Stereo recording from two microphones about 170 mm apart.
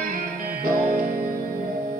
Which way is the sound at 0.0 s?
55° right (ahead or behind).